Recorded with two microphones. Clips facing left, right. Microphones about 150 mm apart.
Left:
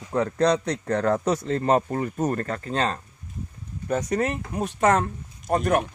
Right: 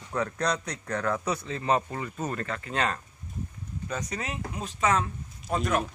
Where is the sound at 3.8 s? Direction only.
55° left (ahead or behind).